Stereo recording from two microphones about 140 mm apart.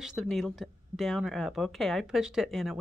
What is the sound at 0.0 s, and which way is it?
Speech, centre (ahead or behind).